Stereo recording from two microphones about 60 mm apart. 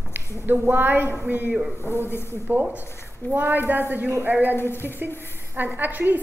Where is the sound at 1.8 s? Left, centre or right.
Left.